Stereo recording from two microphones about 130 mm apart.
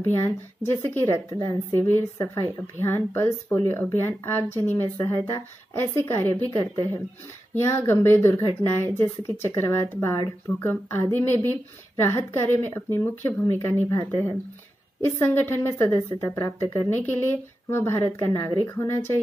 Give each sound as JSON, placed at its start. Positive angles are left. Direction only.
{"t": 0.0, "sound": "a woman's voice", "side_deg": 20}